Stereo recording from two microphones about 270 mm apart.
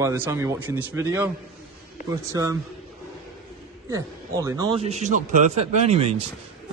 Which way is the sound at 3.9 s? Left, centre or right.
Centre.